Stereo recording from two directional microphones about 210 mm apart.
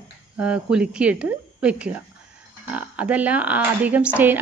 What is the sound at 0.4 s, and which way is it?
Speech, 5° right (ahead or behind).